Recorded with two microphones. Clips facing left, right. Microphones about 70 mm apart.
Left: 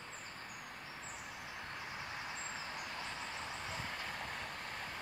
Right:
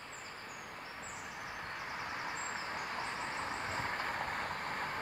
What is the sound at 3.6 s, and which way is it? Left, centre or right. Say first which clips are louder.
Vehicle: right 6 dB; right.